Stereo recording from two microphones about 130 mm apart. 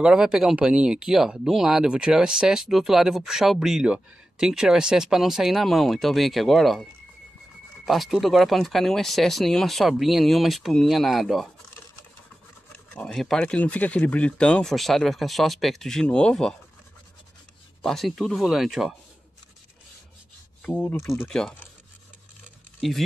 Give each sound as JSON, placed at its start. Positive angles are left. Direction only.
{"t": 0.0, "sound": "speech", "side_deg": -5}
{"t": 12.7, "sound": "speech", "side_deg": 5}
{"t": 17.8, "sound": "speech", "side_deg": 0}
{"t": 20.6, "sound": "speech", "side_deg": 10}
{"t": 21.3, "sound": "speech", "side_deg": 5}
{"t": 22.8, "sound": "speech", "side_deg": 0}